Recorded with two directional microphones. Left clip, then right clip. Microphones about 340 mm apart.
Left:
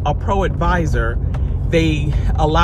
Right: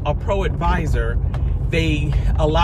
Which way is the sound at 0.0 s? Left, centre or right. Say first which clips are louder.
Left 3 dB; centre.